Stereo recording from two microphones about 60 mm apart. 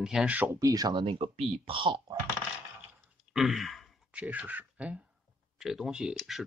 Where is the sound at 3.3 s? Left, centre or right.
Centre.